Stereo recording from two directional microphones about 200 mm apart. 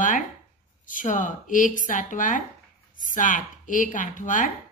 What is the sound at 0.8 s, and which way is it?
A woman's voice, 40° left (ahead or behind).